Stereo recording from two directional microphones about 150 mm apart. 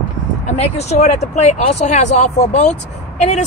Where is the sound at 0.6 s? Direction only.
45° left (ahead or behind).